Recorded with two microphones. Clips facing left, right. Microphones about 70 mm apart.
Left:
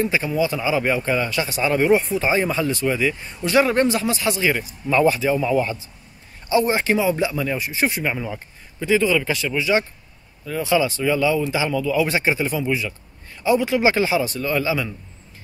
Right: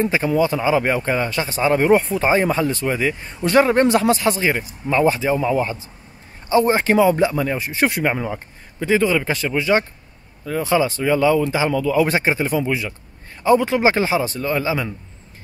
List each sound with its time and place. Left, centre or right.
0.0 s a man's voice: right
3.8 s a man's voice: right
8.1 s a man's voice: right